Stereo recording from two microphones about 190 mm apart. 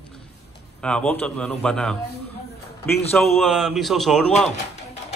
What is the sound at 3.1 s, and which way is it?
Speech, centre (ahead or behind).